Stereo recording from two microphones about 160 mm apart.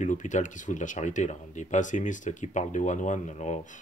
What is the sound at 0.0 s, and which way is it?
Speech, 50° left (ahead or behind).